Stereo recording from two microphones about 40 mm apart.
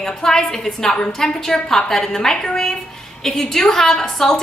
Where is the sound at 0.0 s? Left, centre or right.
Centre.